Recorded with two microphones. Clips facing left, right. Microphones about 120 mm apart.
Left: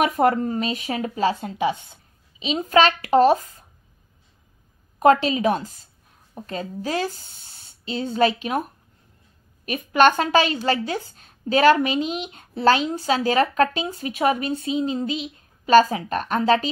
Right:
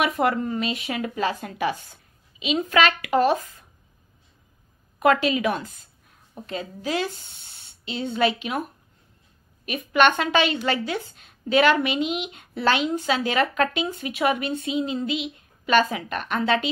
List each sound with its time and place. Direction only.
0.0 s a woman's voice: 40° left (ahead or behind); by 1.8 s 25° left (ahead or behind)
2.3 s a woman's voice: 35° left (ahead or behind)
4.9 s a woman's voice: 35° left (ahead or behind)
9.7 s a woman's voice: 40° left (ahead or behind)